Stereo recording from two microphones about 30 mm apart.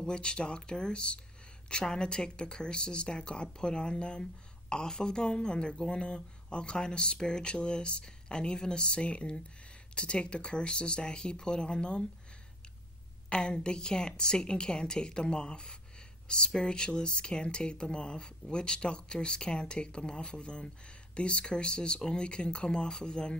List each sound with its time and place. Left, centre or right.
0.0 s speech: left
13.3 s speech: left